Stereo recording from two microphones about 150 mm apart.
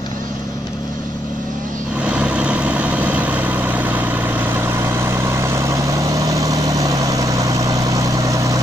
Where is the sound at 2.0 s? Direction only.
5° right (ahead or behind).